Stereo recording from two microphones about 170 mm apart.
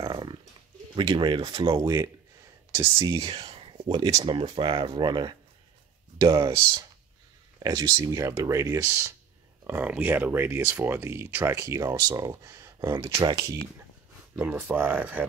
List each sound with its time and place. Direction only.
0.0 s dog: 25° right (ahead or behind)
0.9 s speech: 30° right (ahead or behind)
2.7 s speech: 15° right (ahead or behind)
3.2 s speech: 30° right (ahead or behind)
14.3 s speech: 10° right (ahead or behind)